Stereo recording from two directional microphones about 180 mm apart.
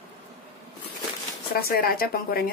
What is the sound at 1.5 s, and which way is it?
Speech, 55° left (ahead or behind).